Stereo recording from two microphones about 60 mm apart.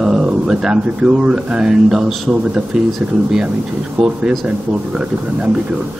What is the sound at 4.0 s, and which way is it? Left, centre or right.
Speech, centre.